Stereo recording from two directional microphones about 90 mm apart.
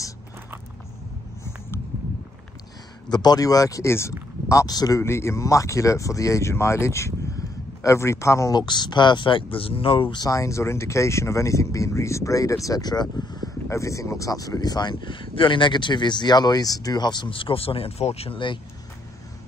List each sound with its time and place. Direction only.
3.1 s speech: 50° left (ahead or behind); by 4.1 s 30° left (ahead or behind)
4.5 s speech: 40° left (ahead or behind)
5.0 s speech: 30° left (ahead or behind)
8.5 s speech: 55° left (ahead or behind)
10.2 s speech: 35° left (ahead or behind)
13.7 s speech: 35° left (ahead or behind); by 18.6 s 70° left (ahead or behind)